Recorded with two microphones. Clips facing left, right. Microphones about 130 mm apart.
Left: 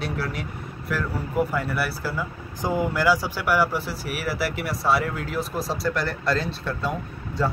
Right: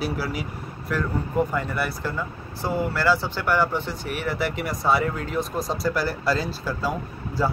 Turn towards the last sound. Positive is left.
turn(degrees=0)  # may be behind; listen again after turning